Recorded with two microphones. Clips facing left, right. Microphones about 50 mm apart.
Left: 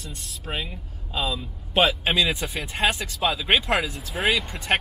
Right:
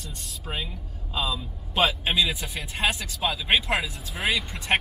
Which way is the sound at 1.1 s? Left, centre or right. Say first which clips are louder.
Left 1 dB; left.